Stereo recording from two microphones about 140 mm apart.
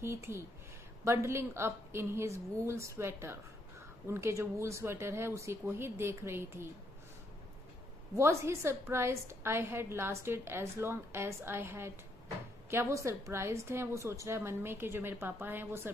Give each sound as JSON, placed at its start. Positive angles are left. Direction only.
{"t": 0.0, "sound": "a woman's voice", "side_deg": -20}
{"t": 8.2, "sound": "a woman's voice", "side_deg": -20}